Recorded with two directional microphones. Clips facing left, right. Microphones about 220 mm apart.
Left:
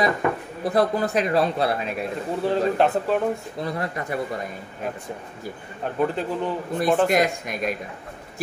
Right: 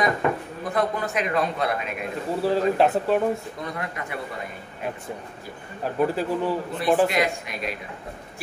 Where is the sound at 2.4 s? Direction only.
Centre (ahead or behind).